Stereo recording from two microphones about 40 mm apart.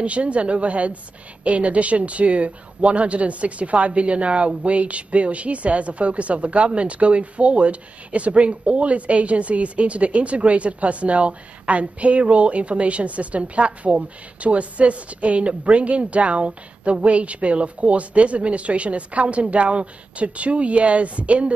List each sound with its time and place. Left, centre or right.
0.0 s a woman's voice: right